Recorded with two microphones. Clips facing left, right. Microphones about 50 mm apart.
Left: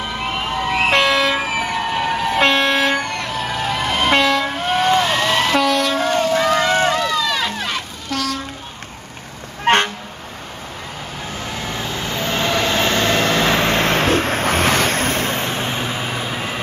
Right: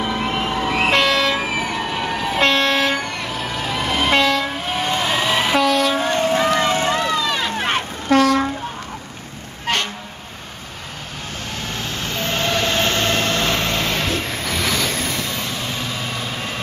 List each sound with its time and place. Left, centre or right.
0.4 s vehicle: centre
5.9 s vehicle: right
6.9 s run: right
7.5 s vehicle: right
9.7 s vehicle: left
11.7 s vehicle: centre